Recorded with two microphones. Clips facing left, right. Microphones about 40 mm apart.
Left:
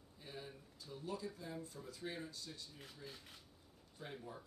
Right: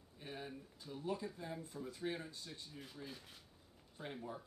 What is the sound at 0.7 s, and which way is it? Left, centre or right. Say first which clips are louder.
Speech: right 3 dB; right.